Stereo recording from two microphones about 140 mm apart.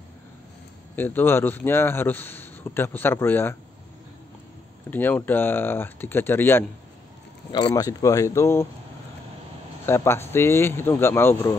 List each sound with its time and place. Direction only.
0.9 s a man's voice: 15° left (ahead or behind)
4.9 s a man's voice: 10° left (ahead or behind)
7.5 s speech: 25° left (ahead or behind)
9.8 s a man's voice: 20° left (ahead or behind)